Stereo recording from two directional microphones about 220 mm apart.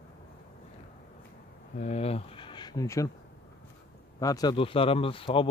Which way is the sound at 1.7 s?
30° left (ahead or behind).